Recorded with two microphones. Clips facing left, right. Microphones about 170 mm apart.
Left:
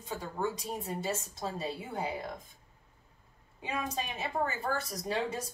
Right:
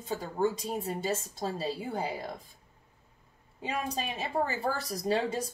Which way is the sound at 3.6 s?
30° right (ahead or behind).